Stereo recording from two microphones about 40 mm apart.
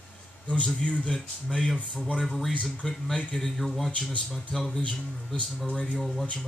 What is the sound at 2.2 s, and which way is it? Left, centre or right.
Speech, centre.